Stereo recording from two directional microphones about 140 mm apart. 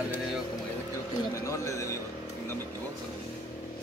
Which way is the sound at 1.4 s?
20° left (ahead or behind).